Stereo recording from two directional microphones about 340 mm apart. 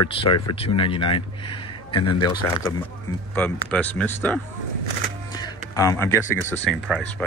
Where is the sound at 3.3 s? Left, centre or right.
Centre.